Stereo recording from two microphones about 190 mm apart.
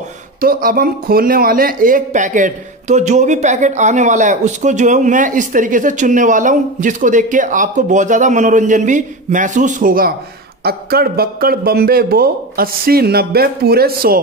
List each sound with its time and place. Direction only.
0.4 s a man's voice: 50° right (ahead or behind)